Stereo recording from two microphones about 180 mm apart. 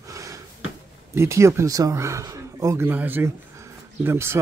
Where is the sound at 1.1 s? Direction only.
15° right (ahead or behind).